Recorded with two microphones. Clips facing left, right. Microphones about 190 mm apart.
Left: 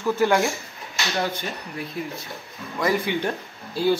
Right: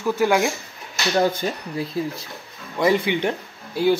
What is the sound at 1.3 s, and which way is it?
Speech, 40° right (ahead or behind).